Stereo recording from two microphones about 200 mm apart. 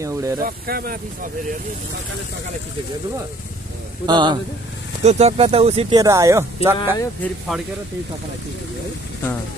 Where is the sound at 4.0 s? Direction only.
20° right (ahead or behind).